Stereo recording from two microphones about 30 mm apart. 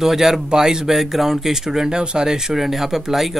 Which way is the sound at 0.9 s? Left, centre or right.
Centre.